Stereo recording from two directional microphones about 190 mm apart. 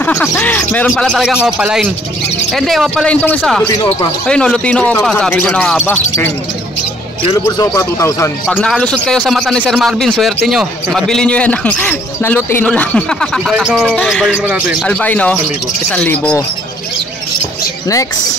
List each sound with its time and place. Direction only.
0.0 s a sound: 10° left (ahead or behind)
0.3 s a man's voice: 10° left (ahead or behind)
7.3 s speech: 15° left (ahead or behind)
8.5 s a man's voice: 5° left (ahead or behind)